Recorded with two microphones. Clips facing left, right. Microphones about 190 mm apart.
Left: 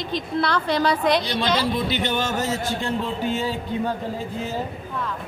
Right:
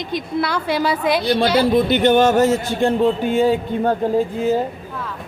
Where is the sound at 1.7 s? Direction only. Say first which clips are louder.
Right 10 dB; 55° right (ahead or behind).